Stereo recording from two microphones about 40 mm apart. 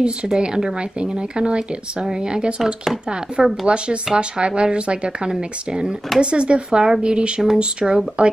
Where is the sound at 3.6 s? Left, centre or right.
Right.